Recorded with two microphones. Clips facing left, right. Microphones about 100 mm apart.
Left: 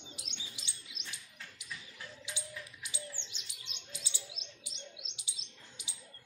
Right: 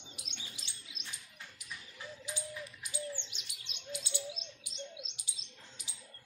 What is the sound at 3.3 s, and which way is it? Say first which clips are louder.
Chirp: even; 60° right (ahead or behind).